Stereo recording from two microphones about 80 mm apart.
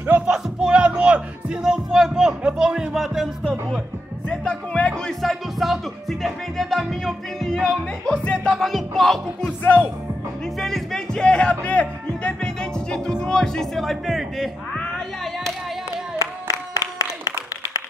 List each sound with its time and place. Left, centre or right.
0.3 s speech: centre
4.3 s speech: centre
8.5 s music: centre
9.4 s music: left
10.6 s music: centre
13.2 s speech: centre
16.2 s music: left